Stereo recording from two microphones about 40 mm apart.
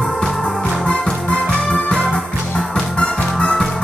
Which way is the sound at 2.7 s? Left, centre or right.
Left.